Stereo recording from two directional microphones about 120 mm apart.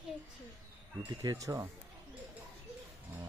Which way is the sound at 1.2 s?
30° right (ahead or behind).